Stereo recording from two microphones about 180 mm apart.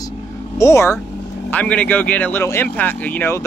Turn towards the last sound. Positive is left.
turn(degrees=10)  # may be behind; listen again after turning